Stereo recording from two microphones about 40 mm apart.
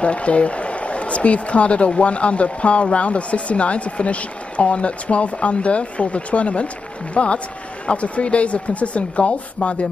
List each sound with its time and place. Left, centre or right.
0.0 s speech: left